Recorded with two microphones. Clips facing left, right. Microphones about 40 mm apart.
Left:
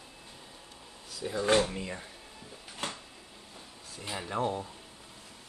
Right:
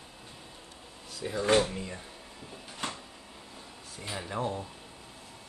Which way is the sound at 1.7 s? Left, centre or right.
Centre.